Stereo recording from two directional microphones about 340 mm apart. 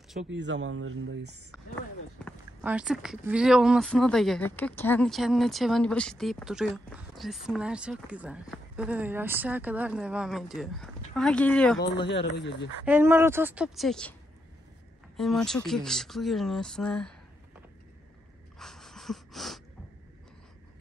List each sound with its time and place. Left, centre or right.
0.3 s speech: right
2.2 s speech: centre
12.1 s speech: left
12.8 s speech: centre
15.1 s speech: centre
18.6 s wheeze: centre